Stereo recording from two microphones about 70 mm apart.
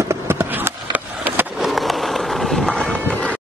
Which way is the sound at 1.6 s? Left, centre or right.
Centre.